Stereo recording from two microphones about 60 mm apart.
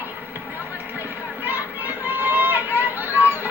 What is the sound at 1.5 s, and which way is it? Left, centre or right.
Chatter, right.